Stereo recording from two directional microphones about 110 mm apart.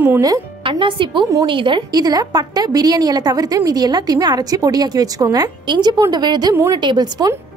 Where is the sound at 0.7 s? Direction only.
50° right (ahead or behind).